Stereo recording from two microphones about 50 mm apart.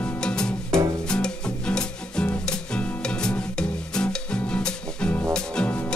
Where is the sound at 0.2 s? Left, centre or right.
Centre.